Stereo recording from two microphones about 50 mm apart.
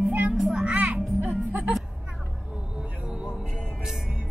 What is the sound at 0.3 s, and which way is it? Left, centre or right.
Children playing, centre.